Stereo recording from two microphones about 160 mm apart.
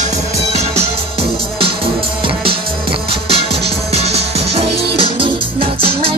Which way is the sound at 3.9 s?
40° right (ahead or behind).